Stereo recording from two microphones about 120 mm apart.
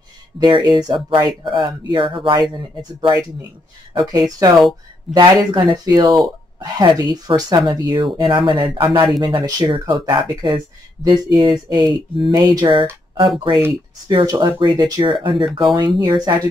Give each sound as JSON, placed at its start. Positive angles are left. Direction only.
{"t": 0.4, "sound": "speech", "side_deg": -40}
{"t": 13.5, "sound": "speech", "side_deg": -45}